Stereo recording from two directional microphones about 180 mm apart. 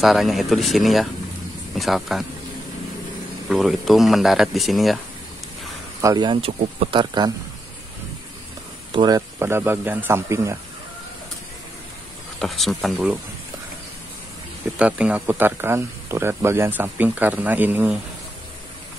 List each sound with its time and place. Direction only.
0.0 s speech: centre (ahead or behind)
3.4 s speech: centre (ahead or behind)
5.9 s speech: 20° right (ahead or behind)
8.9 s speech: 20° right (ahead or behind)
12.4 s speech: centre (ahead or behind)
14.8 s speech: 5° right (ahead or behind)